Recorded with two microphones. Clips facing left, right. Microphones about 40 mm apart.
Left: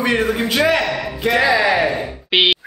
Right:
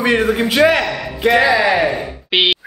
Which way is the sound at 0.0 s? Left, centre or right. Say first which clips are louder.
Right 3 dB; centre.